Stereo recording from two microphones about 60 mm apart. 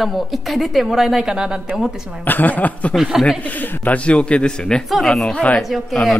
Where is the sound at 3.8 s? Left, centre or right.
Left.